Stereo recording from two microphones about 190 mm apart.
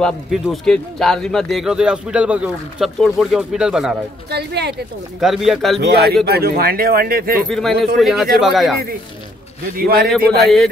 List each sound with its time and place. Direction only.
0.0 s speech: centre (ahead or behind)
4.3 s speech: 60° right (ahead or behind)
5.2 s speech: centre (ahead or behind)
5.8 s speech: 60° right (ahead or behind)
7.4 s speech: centre (ahead or behind)
9.8 s speech: 50° right (ahead or behind)
10.3 s speech: centre (ahead or behind)